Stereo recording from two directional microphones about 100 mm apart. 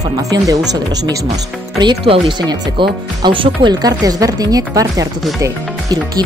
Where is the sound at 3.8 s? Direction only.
40° right (ahead or behind).